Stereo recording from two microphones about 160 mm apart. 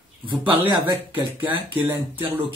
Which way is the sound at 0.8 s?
10° right (ahead or behind).